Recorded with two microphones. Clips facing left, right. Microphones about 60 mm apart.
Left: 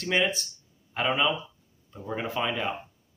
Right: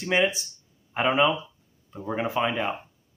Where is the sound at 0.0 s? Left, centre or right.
Centre.